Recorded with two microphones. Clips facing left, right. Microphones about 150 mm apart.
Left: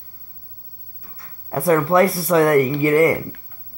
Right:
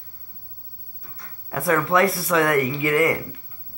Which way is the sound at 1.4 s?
35° left (ahead or behind).